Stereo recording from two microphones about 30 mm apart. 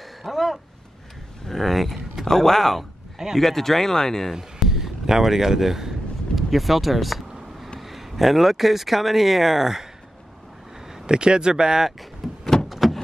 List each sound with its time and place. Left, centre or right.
0.3 s speech: centre
2.2 s speech: centre
4.3 s a sound: centre
6.5 s speech: centre
11.1 s speech: right
12.2 s door: centre
12.6 s a sound: centre